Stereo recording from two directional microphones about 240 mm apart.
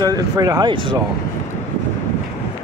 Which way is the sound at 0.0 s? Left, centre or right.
Centre.